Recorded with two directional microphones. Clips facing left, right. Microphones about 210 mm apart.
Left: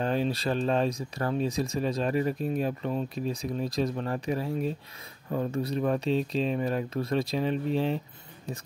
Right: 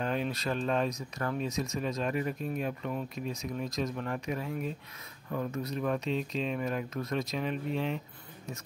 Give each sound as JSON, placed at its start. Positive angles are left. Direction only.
{"t": 0.0, "sound": "speech", "side_deg": 30}